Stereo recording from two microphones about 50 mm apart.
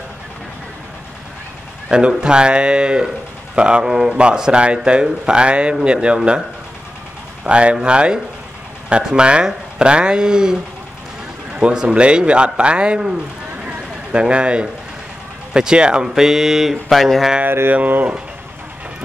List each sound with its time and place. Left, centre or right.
1.9 s speech: centre
7.4 s speech: right
14.2 s speech: right; by 17.3 s centre
17.5 s speech: right
17.7 s speech: right